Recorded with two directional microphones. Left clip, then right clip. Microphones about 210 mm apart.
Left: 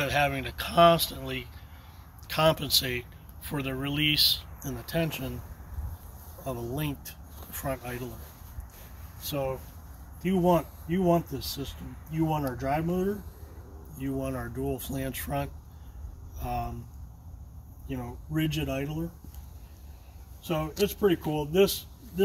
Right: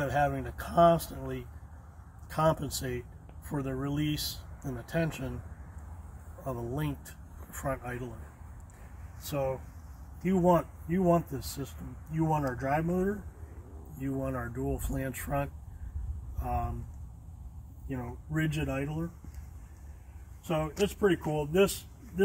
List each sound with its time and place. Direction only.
0.0 s speech: 5° left (ahead or behind)
4.1 s speech: 20° right (ahead or behind)
4.6 s speech: 10° left (ahead or behind)
6.4 s speech: 10° left (ahead or behind)
9.2 s speech: centre (ahead or behind)
17.8 s speech: 10° left (ahead or behind)
20.7 s speech: 10° left (ahead or behind)